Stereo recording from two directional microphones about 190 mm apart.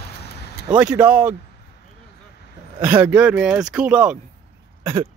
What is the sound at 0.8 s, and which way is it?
Speech, 10° right (ahead or behind).